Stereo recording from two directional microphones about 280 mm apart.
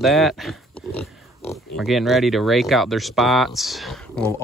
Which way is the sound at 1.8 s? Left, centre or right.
Centre.